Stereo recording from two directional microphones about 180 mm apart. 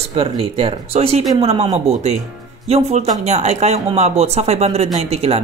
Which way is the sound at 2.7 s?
35° right (ahead or behind).